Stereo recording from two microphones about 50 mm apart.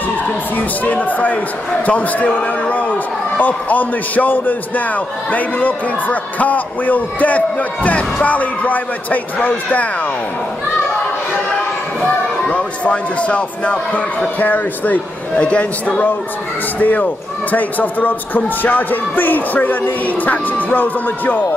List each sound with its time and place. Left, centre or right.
0.6 s a man's voice: left
12.4 s speech: left
14.4 s a man's voice: left
15.4 s speech: centre
16.8 s a man's voice: left